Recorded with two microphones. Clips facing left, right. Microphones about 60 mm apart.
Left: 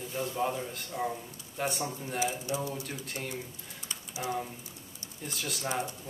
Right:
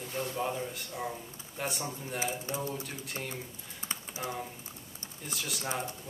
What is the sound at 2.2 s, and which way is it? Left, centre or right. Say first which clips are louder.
Speech: left 3 dB; right.